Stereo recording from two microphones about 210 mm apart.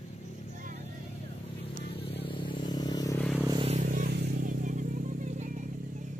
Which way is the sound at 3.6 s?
30° right (ahead or behind).